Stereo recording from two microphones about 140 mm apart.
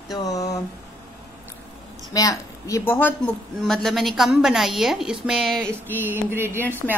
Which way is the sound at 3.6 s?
Centre (ahead or behind).